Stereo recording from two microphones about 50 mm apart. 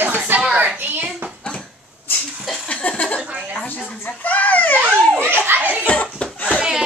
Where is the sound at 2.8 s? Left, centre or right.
Left.